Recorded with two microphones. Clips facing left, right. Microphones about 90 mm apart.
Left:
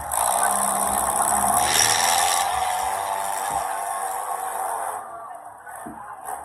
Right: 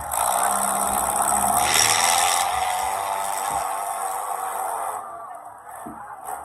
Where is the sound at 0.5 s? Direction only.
45° right (ahead or behind).